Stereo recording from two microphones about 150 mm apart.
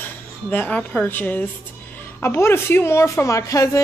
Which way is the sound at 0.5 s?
10° left (ahead or behind).